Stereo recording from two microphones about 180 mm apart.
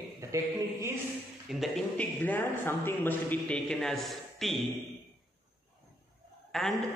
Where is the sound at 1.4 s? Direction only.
Centre (ahead or behind).